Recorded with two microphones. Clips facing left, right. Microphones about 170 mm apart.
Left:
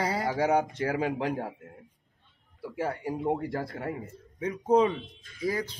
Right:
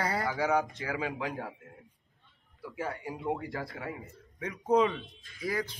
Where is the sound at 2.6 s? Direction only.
50° left (ahead or behind).